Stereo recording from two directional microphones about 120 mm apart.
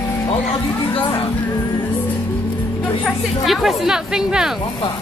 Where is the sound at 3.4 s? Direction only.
5° right (ahead or behind).